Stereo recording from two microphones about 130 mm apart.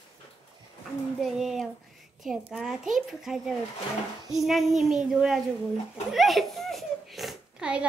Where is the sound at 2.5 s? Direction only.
5° right (ahead or behind).